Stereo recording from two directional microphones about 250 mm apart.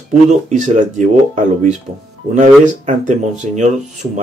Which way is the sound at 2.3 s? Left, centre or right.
Right.